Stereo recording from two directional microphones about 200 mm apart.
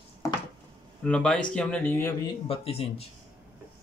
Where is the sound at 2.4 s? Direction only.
30° left (ahead or behind).